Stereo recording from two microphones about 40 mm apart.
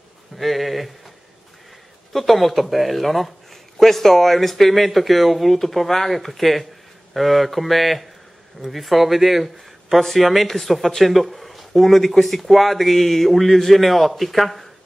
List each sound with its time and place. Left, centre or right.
0.4 s speech: centre
2.1 s speech: centre